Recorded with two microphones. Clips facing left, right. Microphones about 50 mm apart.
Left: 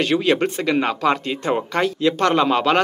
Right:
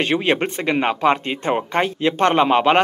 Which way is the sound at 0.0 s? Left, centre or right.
Right.